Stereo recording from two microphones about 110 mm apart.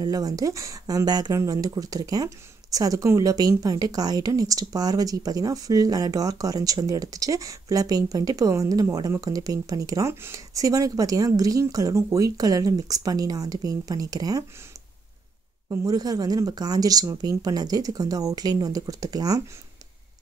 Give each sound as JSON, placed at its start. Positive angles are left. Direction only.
{"t": 0.0, "sound": "speech", "side_deg": -35}
{"t": 15.7, "sound": "speech", "side_deg": -30}